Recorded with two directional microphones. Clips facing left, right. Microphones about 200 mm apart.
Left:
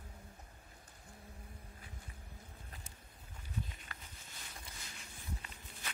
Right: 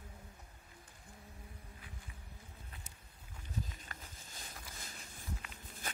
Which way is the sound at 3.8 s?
40° right (ahead or behind).